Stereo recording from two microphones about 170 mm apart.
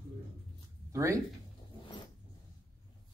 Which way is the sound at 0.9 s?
15° right (ahead or behind).